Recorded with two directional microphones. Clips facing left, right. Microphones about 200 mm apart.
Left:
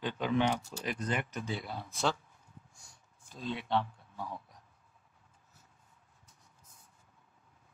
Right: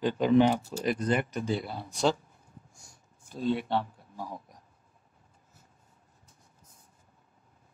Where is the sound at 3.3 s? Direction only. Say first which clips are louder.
Right 5 dB; 40° right (ahead or behind).